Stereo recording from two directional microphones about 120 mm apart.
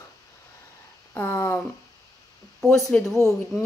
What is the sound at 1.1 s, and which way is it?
Speech, 15° left (ahead or behind).